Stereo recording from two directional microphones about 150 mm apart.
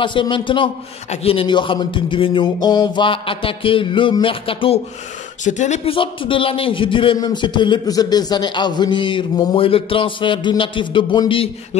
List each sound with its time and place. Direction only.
0.0 s a man's voice: 35° left (ahead or behind)
5.4 s speech: 55° left (ahead or behind)
5.9 s a man's voice: 35° left (ahead or behind)